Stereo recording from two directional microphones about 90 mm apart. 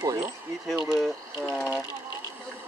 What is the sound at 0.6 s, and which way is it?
Speech, centre (ahead or behind).